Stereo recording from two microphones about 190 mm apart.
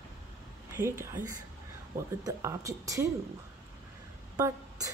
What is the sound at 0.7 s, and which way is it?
Speech, 15° right (ahead or behind).